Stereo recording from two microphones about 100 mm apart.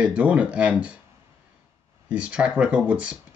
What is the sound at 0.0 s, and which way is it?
Speech, 15° right (ahead or behind).